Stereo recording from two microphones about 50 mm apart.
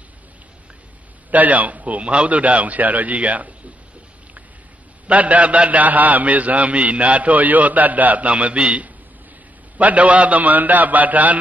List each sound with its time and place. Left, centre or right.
1.3 s a man's voice: right
5.0 s a man's voice: right